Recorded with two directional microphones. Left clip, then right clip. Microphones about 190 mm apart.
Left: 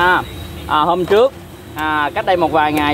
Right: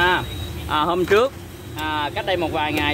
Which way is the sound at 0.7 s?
15° left (ahead or behind).